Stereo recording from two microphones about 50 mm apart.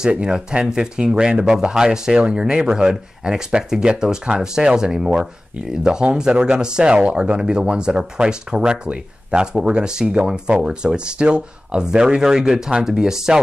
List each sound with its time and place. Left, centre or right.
0.1 s speech: centre